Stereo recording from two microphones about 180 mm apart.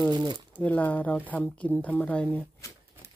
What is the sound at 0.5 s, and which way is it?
Speech, 10° left (ahead or behind).